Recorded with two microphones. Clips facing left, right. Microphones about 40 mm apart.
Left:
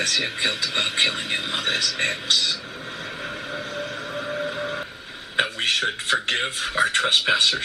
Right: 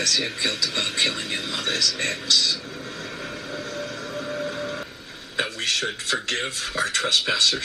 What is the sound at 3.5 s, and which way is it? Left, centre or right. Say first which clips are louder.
Vehicle: even; left.